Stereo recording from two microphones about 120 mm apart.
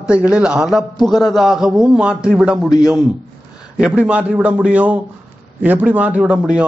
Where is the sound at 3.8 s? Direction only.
10° right (ahead or behind).